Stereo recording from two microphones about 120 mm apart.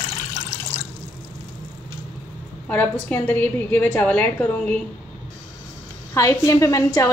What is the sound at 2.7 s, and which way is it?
A woman's voice, 15° left (ahead or behind).